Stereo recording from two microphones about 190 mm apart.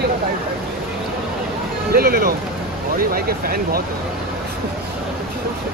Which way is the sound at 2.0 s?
50° right (ahead or behind).